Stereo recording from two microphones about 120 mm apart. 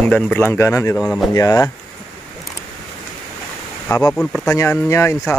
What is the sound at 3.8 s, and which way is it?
Speech, 25° left (ahead or behind).